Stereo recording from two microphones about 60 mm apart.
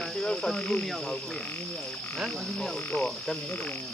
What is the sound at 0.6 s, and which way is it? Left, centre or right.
Speech, left.